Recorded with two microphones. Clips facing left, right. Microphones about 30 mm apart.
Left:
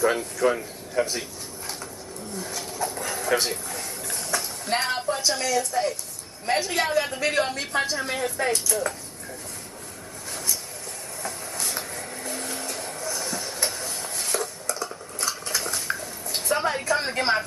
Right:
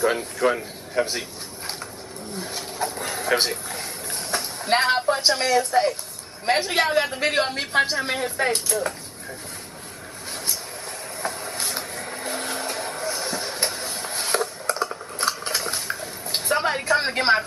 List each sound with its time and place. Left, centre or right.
0.0 s speech: right
1.0 s a woman's voice: right
2.3 s a woman's voice: right
3.6 s a sound: right
4.6 s a woman's voice: right
10.3 s vehicle: right
11.2 s train: right
11.6 s vehicle: right
13.7 s a sound: right